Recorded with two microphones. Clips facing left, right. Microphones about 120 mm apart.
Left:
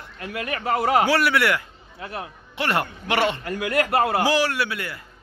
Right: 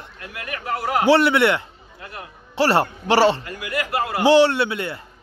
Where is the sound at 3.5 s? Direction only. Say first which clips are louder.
Left 4 dB; 55° left (ahead or behind).